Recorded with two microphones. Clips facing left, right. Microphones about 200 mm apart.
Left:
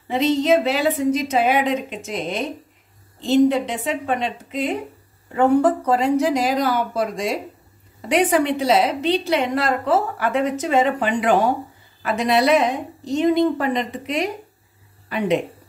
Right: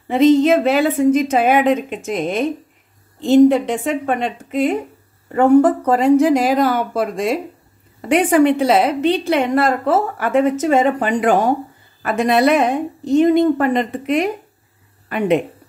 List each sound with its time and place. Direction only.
0.1 s a woman's voice: 50° right (ahead or behind)